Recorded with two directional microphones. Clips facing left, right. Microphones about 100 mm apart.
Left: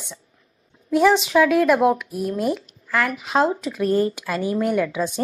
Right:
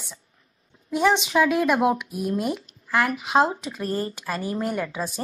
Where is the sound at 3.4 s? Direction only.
5° right (ahead or behind).